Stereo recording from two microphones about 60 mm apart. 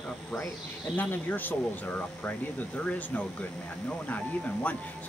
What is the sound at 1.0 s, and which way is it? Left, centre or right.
Speech, left.